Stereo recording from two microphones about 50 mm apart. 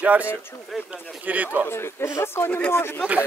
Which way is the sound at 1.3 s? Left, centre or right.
Right.